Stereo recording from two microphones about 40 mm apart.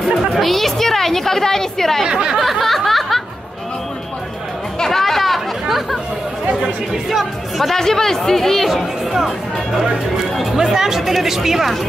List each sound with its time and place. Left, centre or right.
0.3 s a woman's voice: centre
2.0 s speech: right
2.3 s snicker: centre
4.7 s chatter: centre
6.5 s chatter: centre
7.1 s music: centre
7.7 s speech: centre
10.3 s speech: centre